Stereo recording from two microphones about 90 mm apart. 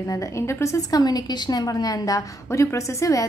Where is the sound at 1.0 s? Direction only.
50° left (ahead or behind).